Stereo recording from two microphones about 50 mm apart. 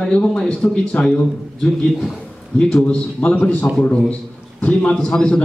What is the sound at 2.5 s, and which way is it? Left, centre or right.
A man's voice, centre.